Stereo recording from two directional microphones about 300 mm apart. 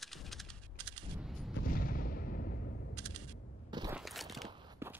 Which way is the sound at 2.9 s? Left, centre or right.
Centre.